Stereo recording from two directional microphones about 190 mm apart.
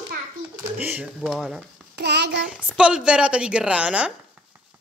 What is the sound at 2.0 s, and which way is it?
Child singing, 65° right (ahead or behind).